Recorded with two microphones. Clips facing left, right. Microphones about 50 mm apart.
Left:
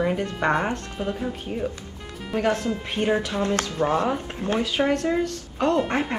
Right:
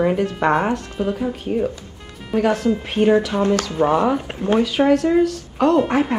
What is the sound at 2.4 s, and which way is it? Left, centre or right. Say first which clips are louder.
Speech: right 5 dB; right.